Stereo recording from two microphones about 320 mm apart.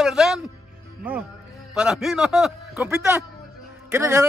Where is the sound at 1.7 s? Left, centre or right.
Centre.